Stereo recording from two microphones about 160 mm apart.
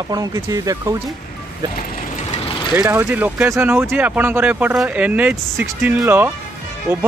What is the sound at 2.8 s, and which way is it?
Speech, 15° right (ahead or behind).